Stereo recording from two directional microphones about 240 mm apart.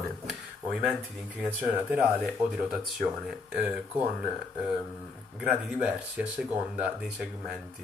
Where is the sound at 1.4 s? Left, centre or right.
Centre.